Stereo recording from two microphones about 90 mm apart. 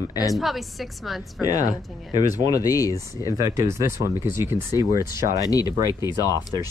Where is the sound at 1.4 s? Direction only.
40° left (ahead or behind).